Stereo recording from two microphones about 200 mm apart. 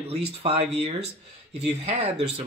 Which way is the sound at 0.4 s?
30° right (ahead or behind).